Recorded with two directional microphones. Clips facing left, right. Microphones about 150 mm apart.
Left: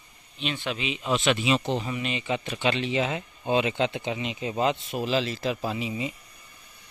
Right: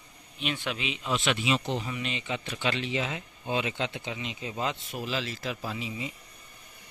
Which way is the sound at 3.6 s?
75° left (ahead or behind).